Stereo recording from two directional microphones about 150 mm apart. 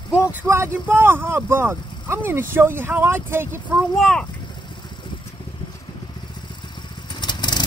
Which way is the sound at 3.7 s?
Centre (ahead or behind).